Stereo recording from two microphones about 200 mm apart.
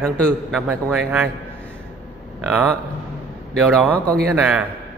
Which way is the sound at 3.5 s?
Centre (ahead or behind).